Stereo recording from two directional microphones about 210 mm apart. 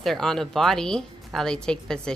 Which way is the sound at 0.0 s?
Centre (ahead or behind).